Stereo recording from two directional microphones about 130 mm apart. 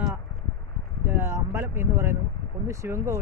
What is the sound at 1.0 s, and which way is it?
Speech, 15° right (ahead or behind).